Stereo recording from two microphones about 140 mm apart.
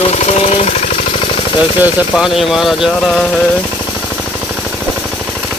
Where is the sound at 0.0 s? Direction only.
50° left (ahead or behind).